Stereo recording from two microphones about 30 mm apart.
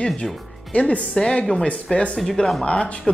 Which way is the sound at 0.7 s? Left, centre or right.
Left.